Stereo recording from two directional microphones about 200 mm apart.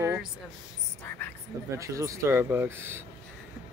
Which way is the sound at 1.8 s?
15° right (ahead or behind).